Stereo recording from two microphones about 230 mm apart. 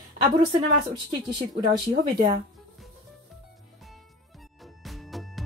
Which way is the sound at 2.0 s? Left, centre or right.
Right.